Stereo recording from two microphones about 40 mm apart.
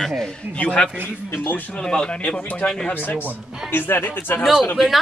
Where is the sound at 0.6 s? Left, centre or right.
Left.